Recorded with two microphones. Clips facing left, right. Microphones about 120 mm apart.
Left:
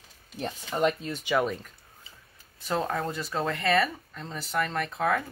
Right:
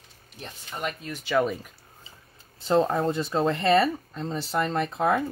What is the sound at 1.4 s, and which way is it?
Speech, 5° right (ahead or behind).